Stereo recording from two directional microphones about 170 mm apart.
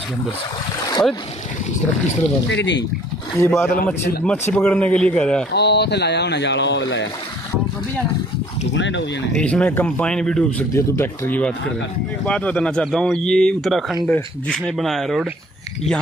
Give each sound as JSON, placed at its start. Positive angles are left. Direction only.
{"t": 2.5, "sound": "speech", "side_deg": 90}
{"t": 3.3, "sound": "speech", "side_deg": 15}
{"t": 3.7, "sound": "a man's voice", "side_deg": 65}
{"t": 4.2, "sound": "speech", "side_deg": 10}
{"t": 5.5, "sound": "speech", "side_deg": 75}
{"t": 8.7, "sound": "speech", "side_deg": 90}
{"t": 9.3, "sound": "speech", "side_deg": 5}